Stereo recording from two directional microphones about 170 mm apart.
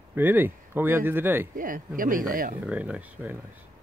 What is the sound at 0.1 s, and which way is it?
Speech, 10° right (ahead or behind).